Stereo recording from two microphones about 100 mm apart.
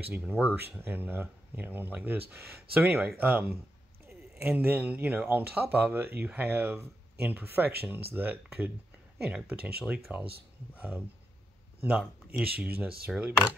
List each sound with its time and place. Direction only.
0.1 s speech: 15° right (ahead or behind)